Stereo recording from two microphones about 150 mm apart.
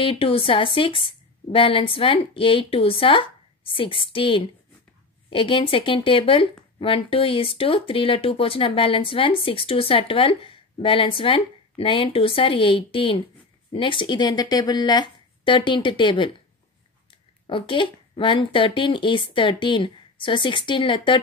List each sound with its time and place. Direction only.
0.0 s speech: 35° left (ahead or behind)
17.5 s speech: 35° left (ahead or behind)